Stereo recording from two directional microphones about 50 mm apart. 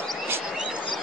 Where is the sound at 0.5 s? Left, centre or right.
Centre.